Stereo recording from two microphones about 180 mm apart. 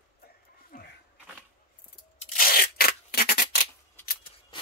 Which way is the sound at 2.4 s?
55° left (ahead or behind).